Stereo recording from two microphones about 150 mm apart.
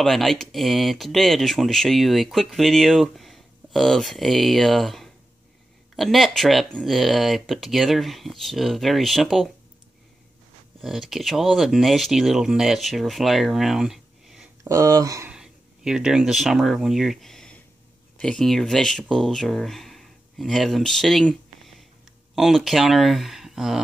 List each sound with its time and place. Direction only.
0.0 s speech: centre (ahead or behind)
10.8 s speech: centre (ahead or behind)
14.6 s speech: 20° right (ahead or behind)
15.2 s speech: 5° right (ahead or behind)